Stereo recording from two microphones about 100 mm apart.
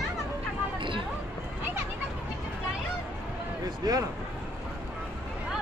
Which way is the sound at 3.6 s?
40° right (ahead or behind).